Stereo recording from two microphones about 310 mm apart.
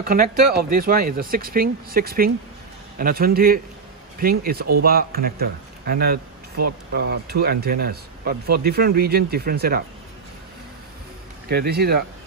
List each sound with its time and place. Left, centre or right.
0.0 s a man's voice: right
11.4 s speech: right